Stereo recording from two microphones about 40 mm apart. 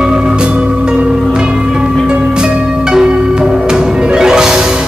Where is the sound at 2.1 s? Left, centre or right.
Right.